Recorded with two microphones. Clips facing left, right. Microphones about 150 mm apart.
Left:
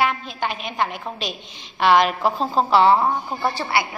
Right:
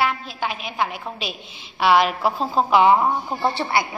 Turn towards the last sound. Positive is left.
turn(degrees=-25)  # may be behind; listen again after turning